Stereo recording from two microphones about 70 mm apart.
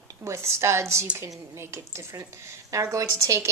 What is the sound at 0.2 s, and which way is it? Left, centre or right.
Speech, right.